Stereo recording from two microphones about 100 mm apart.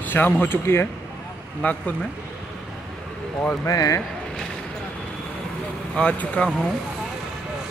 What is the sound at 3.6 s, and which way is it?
Speech, 35° left (ahead or behind).